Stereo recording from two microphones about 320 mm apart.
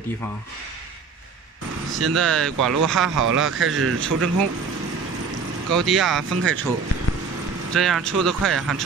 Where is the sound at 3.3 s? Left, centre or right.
Right.